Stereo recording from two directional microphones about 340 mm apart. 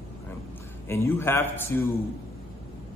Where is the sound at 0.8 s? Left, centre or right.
Centre.